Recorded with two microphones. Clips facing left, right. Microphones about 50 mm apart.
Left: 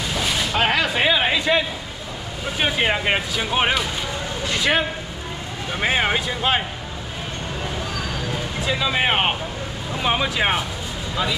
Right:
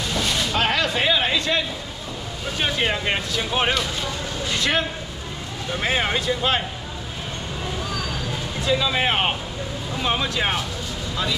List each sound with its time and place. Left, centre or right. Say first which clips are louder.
0.2 s a sound: left 2 dB; centre
2.6 s speech: left 3 dB; centre
8.5 s speech: right 1 dB; centre